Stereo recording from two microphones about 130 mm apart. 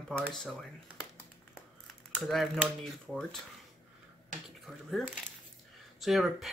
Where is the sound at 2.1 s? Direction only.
Centre (ahead or behind).